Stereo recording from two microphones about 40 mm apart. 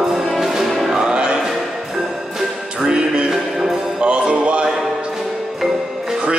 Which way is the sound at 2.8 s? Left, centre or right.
Centre.